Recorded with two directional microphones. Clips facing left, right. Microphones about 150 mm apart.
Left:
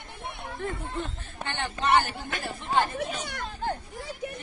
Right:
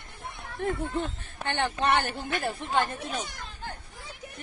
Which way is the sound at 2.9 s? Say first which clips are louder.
Left 2 dB; 65° left (ahead or behind).